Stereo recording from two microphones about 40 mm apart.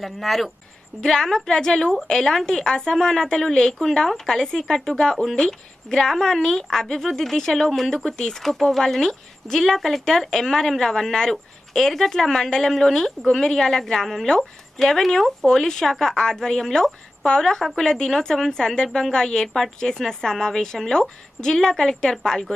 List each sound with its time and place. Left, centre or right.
0.0 s speech: centre
1.0 s speech: centre